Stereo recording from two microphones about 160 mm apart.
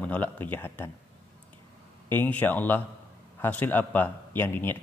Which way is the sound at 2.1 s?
10° left (ahead or behind).